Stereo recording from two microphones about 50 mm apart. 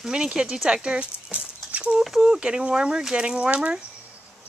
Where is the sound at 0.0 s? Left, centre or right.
Centre.